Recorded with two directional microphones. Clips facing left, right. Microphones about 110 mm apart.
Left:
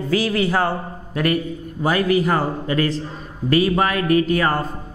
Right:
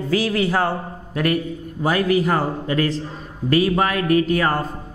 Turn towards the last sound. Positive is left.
turn(degrees=10)  # may be behind; listen again after turning